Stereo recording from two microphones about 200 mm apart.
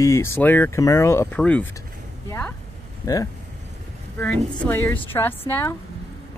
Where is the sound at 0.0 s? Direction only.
15° left (ahead or behind).